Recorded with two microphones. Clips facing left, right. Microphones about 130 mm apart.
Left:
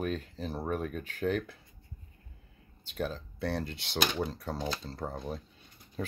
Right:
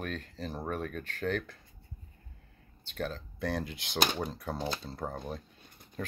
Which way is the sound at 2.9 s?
5° left (ahead or behind).